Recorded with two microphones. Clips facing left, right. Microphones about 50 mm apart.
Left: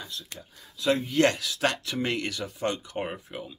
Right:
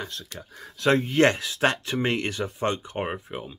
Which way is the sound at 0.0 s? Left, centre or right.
Right.